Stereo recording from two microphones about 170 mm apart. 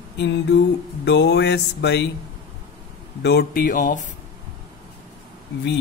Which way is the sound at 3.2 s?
70° left (ahead or behind).